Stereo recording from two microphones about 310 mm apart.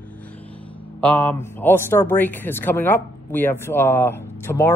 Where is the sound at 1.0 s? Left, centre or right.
Centre.